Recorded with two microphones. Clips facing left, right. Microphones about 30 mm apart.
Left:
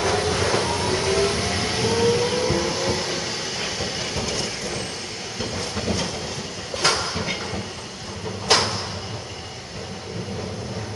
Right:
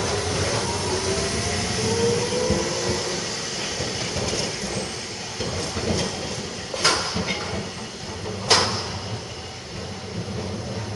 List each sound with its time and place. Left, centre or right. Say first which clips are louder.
0.0 s vehicle: left 3 dB; left; by 4.8 s centre
5.4 s train: even; centre
6.8 s a sound: even; centre